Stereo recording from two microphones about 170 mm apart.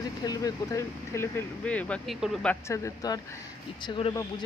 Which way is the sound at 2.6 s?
20° left (ahead or behind).